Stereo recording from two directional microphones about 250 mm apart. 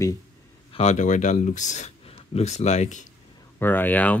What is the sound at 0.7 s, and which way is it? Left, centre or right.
Speech, left.